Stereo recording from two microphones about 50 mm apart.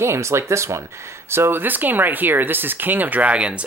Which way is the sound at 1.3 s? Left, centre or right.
Right.